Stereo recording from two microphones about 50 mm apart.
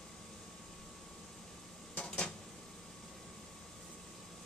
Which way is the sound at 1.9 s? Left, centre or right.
Centre.